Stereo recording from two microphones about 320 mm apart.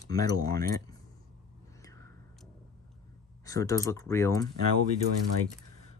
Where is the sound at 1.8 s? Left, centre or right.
Centre.